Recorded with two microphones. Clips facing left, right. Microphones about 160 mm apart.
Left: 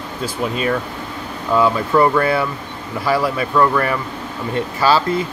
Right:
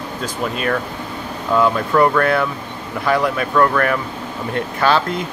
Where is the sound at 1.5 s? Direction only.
5° left (ahead or behind).